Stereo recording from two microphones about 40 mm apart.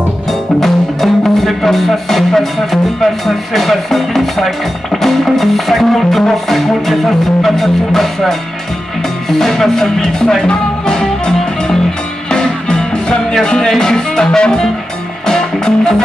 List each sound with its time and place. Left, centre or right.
0.3 s speech: centre
10.9 s music: centre
13.7 s speech: centre
15.2 s music: centre